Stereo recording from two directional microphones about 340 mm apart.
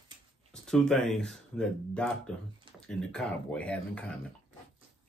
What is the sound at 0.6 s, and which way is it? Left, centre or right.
Speech, centre.